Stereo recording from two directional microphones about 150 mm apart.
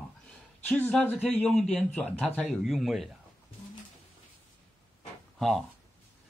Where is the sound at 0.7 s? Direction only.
10° left (ahead or behind).